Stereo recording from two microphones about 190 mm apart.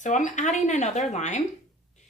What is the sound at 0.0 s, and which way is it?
Speech, 40° left (ahead or behind).